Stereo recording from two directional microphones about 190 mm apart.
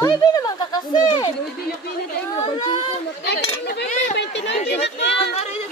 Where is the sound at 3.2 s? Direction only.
60° left (ahead or behind).